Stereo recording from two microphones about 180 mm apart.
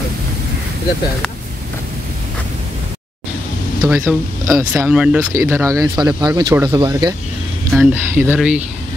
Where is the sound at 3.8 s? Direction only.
15° right (ahead or behind).